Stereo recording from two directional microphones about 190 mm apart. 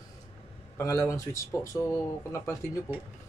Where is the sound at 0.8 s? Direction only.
15° left (ahead or behind).